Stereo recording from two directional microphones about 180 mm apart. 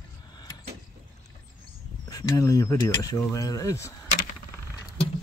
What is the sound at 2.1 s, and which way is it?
Speech, 20° left (ahead or behind).